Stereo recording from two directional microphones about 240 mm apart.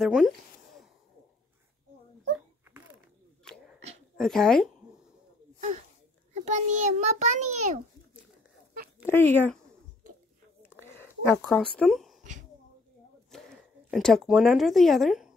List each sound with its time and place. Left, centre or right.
0.0 s speech: centre
3.4 s dog: centre
4.2 s speech: centre
6.3 s a child's voice: right
9.0 s speech: centre
10.9 s speech: centre
12.2 s a sound: right
13.8 s speech: centre